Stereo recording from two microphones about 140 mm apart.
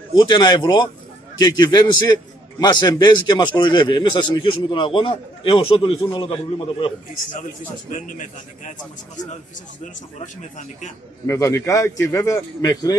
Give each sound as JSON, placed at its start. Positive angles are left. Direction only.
{"t": 0.1, "sound": "a man's voice", "side_deg": 30}
{"t": 7.9, "sound": "a man's voice", "side_deg": 70}
{"t": 11.2, "sound": "a man's voice", "side_deg": 20}